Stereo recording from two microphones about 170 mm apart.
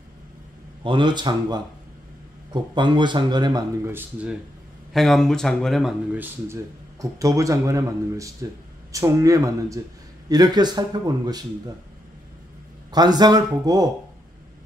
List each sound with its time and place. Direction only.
0.8 s speech: 30° right (ahead or behind)
3.8 s speech: 10° right (ahead or behind)
4.9 s speech: centre (ahead or behind)
6.1 s speech: 15° right (ahead or behind)
12.9 s speech: 25° right (ahead or behind)